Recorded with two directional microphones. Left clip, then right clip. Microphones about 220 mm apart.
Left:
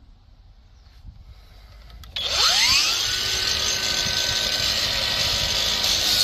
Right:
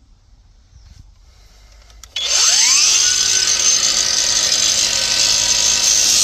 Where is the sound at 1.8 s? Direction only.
20° right (ahead or behind).